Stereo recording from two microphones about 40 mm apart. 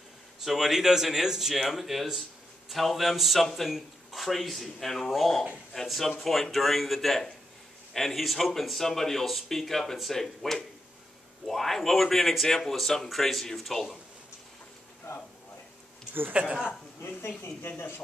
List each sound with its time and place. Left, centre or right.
0.4 s speech: centre
16.4 s speech: right
17.6 s speech: left